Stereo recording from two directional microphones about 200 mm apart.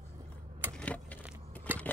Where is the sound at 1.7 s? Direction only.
10° right (ahead or behind).